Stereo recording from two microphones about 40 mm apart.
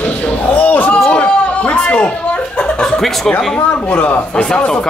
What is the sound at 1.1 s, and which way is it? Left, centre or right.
A man's voice, left.